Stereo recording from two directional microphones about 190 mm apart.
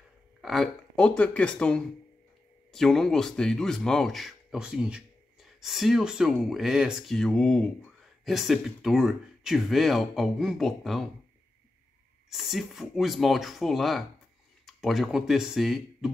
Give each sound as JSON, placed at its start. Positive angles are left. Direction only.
{"t": 0.4, "sound": "speech", "side_deg": 0}
{"t": 12.3, "sound": "speech", "side_deg": 0}